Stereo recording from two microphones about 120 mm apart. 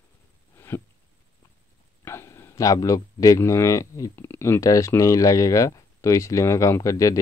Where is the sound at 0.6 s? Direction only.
20° left (ahead or behind).